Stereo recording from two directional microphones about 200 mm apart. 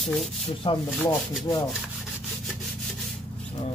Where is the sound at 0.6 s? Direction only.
25° left (ahead or behind).